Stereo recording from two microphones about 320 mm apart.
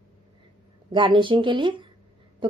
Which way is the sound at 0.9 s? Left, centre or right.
Centre.